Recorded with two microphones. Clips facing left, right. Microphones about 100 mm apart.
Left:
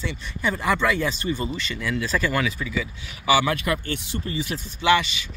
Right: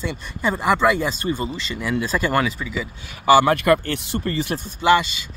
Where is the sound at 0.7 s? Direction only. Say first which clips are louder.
Right 5 dB; 15° right (ahead or behind).